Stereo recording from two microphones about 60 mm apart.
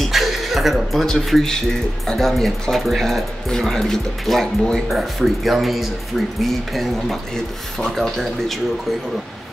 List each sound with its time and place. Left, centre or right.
0.0 s chuckle: centre
1.0 s speech: centre